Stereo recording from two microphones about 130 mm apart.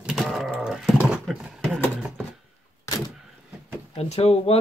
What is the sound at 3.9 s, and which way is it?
Speech, 50° left (ahead or behind).